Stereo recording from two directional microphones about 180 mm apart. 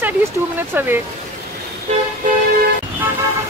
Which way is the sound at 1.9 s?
40° right (ahead or behind).